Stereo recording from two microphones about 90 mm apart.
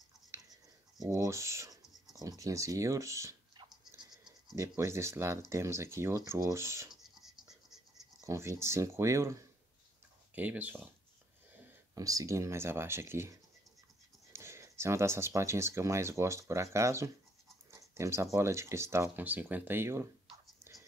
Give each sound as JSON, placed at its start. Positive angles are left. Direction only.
{"t": 0.5, "sound": "a sound", "side_deg": -45}
{"t": 1.1, "sound": "speech", "side_deg": -30}
{"t": 4.1, "sound": "scratch", "side_deg": -5}
{"t": 4.6, "sound": "speech", "side_deg": -35}
{"t": 7.0, "sound": "writing", "side_deg": -5}
{"t": 8.3, "sound": "speech", "side_deg": -30}
{"t": 10.3, "sound": "speech", "side_deg": -20}
{"t": 11.9, "sound": "speech", "side_deg": -40}
{"t": 19.1, "sound": "speech", "side_deg": -20}